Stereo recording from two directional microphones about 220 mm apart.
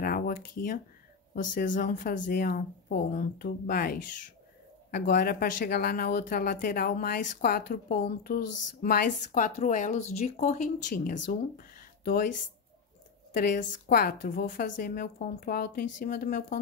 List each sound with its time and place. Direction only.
0.0 s a sound: 40° left (ahead or behind)
1.3 s speech: 40° left (ahead or behind)
13.4 s speech: 45° left (ahead or behind)